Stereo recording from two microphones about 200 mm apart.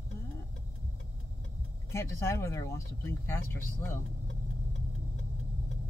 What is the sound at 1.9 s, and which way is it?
Speech, 15° left (ahead or behind).